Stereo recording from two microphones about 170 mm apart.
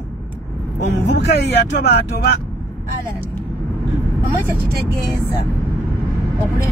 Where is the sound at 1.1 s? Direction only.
75° left (ahead or behind).